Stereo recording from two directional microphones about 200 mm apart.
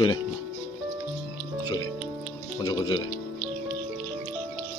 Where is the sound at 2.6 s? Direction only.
20° left (ahead or behind).